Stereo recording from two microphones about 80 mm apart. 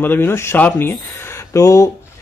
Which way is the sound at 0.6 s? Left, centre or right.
Centre.